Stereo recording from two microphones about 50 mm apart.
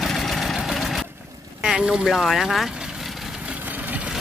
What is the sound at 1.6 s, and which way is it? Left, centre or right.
Speech, centre.